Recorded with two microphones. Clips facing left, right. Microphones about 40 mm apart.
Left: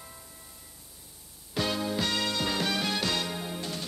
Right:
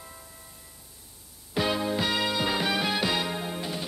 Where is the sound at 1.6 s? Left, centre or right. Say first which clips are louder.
Right 3 dB; centre.